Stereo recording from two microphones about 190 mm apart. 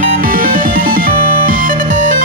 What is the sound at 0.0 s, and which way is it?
Music, 45° right (ahead or behind).